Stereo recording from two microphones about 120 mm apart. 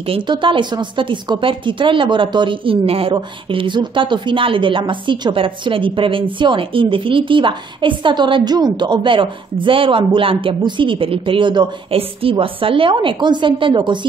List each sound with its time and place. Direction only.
0.1 s a woman's voice: 45° right (ahead or behind)